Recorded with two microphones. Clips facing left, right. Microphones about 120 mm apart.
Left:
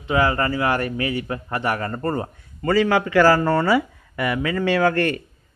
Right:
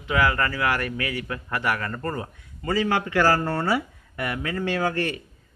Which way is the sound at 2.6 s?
85° left.